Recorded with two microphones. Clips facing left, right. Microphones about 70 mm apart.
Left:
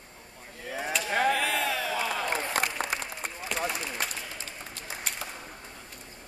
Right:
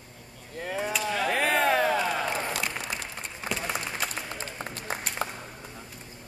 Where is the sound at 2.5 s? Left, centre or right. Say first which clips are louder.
Left 2 dB; left.